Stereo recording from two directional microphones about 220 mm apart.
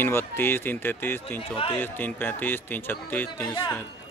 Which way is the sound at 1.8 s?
10° left (ahead or behind).